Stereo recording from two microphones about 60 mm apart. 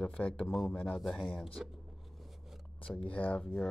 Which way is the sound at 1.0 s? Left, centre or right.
Centre.